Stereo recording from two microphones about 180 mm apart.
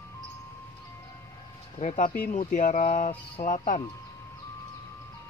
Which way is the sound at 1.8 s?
45° left (ahead or behind).